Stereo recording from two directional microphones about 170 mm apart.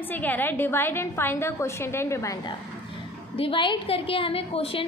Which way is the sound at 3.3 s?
30° left (ahead or behind).